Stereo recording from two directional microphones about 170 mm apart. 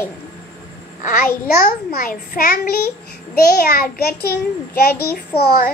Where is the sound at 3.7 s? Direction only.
65° left (ahead or behind).